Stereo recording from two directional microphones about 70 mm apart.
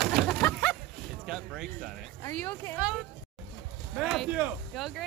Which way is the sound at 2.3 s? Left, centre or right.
Centre.